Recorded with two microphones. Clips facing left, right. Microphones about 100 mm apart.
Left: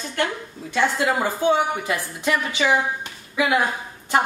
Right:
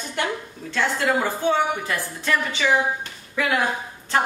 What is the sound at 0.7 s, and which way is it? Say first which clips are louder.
A woman's voice: left 1 dB; 15° left (ahead or behind).